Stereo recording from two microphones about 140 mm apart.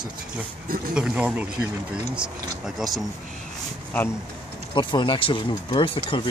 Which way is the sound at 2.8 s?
Centre (ahead or behind).